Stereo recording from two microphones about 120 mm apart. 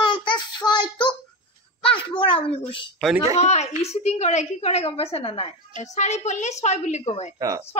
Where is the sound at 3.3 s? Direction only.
65° left (ahead or behind).